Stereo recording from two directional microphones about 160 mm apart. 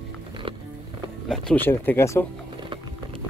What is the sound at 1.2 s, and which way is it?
Speech, 5° left (ahead or behind).